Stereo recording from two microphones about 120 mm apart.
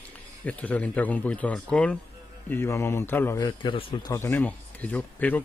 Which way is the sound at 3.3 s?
35° left (ahead or behind).